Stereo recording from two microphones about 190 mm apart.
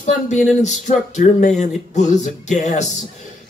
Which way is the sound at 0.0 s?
40° left (ahead or behind).